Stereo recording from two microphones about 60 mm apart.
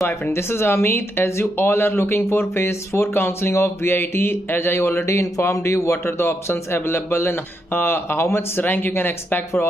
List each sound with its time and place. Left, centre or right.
0.0 s speech: left